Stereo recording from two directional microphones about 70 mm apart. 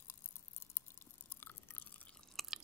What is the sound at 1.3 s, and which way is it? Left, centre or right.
Chewing, left.